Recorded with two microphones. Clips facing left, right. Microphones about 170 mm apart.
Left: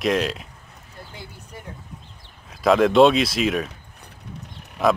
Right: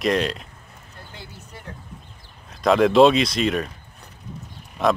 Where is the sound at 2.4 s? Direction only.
Centre (ahead or behind).